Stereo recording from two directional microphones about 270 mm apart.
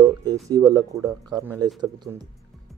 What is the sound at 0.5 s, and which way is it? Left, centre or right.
Speech, centre.